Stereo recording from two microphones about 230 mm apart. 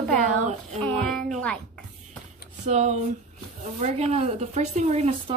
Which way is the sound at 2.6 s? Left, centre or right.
Right.